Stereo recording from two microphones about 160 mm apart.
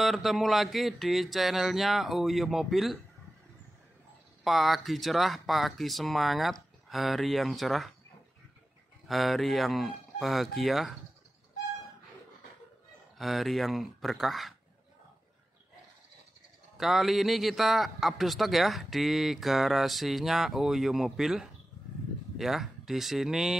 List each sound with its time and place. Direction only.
0.0 s a man's voice: centre (ahead or behind)
4.5 s a man's voice: centre (ahead or behind)
9.0 s a man's voice: centre (ahead or behind)
13.2 s a man's voice: centre (ahead or behind)
16.7 s a man's voice: centre (ahead or behind)